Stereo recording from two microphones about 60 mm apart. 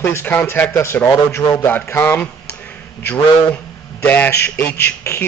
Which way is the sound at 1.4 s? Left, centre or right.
Left.